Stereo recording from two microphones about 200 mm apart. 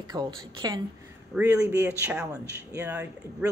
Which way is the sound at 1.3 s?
5° right (ahead or behind).